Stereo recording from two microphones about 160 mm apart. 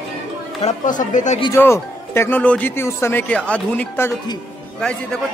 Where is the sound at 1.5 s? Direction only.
15° left (ahead or behind).